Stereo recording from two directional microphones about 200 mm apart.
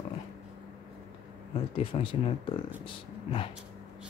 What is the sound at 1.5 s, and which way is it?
Speech, 25° left (ahead or behind).